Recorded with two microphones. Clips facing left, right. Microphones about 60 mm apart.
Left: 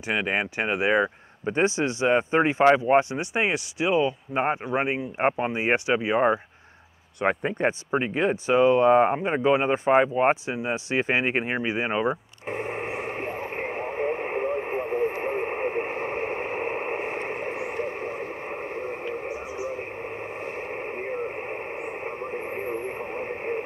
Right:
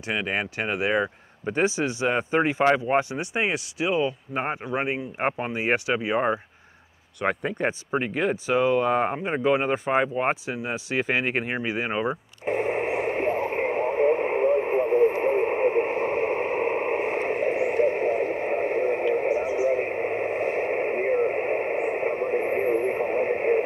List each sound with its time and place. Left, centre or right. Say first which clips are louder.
0.0 s speech: left 1 dB; centre
1.4 s speech: left 1 dB; centre
2.0 s speech: left 2 dB; centre
7.2 s speech: left 1 dB; centre
8.6 s speech: left 5 dB; left
9.0 s speech: left 2 dB; centre
11.0 s speech: even; centre
12.4 s radio: right 6 dB; centre
19.3 s radio: right 9 dB; right
19.7 s radio: right 8 dB; right